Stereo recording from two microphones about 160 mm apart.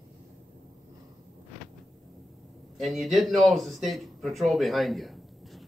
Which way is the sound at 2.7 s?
Centre (ahead or behind).